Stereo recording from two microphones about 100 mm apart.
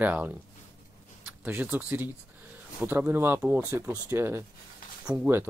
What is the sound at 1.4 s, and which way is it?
Speech, 20° right (ahead or behind).